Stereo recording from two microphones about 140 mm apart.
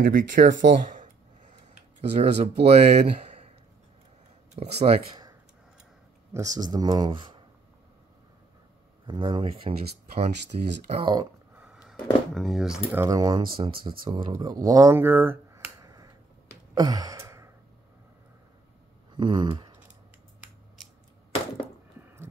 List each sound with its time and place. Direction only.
0.0 s speech: 80° right
2.0 s speech: 55° right (ahead or behind)
4.6 s speech: 45° right (ahead or behind)
6.3 s speech: 25° right (ahead or behind)
9.0 s speech: 35° right (ahead or behind)
11.5 s a sound: 5° right (ahead or behind)
12.9 s speech: 25° right (ahead or behind)
16.7 s sigh: 25° right (ahead or behind)
19.1 s a sound: 35° right (ahead or behind)